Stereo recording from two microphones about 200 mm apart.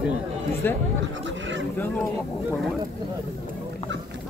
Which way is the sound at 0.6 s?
10° left (ahead or behind).